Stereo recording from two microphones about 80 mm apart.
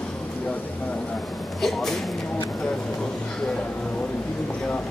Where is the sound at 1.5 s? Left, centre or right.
Centre.